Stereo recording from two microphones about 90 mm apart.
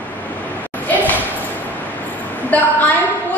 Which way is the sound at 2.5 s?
20° left (ahead or behind).